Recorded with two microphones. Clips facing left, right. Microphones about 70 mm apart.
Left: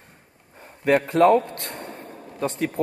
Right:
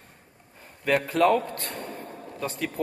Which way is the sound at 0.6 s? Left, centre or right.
Left.